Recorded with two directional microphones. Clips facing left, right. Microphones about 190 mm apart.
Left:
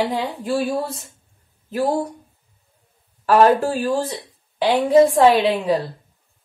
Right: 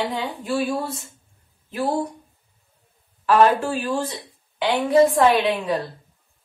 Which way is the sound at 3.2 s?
40° left (ahead or behind).